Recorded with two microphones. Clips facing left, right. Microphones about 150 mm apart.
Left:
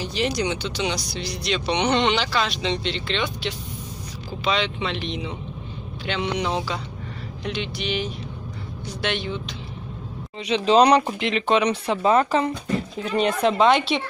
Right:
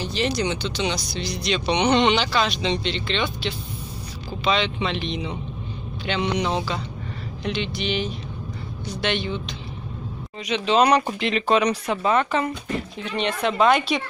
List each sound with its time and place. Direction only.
0.0 s speech: 10° left (ahead or behind)
4.5 s speech: 5° left (ahead or behind)
10.4 s speech: 35° left (ahead or behind)
11.1 s speech: 15° left (ahead or behind)